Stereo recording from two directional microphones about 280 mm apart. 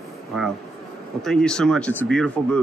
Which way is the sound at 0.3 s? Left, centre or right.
Centre.